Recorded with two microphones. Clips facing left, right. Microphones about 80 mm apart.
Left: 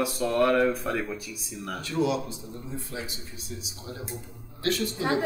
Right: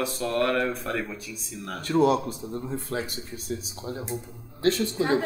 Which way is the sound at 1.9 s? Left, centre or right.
Right.